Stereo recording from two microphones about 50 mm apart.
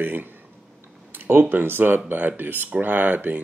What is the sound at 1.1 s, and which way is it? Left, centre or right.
Speech, right.